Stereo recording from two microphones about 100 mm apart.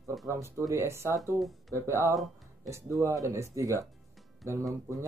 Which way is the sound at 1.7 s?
25° right (ahead or behind).